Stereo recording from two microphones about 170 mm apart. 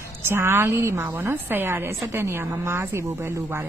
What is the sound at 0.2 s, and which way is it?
Speech, 15° right (ahead or behind).